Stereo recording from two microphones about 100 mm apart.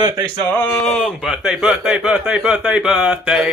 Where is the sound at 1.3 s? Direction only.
5° right (ahead or behind).